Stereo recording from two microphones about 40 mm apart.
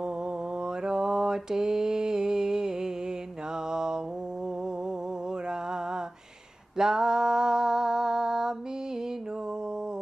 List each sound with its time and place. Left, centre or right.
0.6 s mantra: centre
5.5 s mantra: centre